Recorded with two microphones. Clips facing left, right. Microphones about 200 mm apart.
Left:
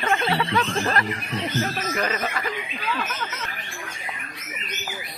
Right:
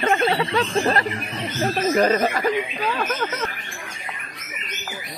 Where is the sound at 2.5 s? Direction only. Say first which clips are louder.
Right 7 dB; 50° right (ahead or behind).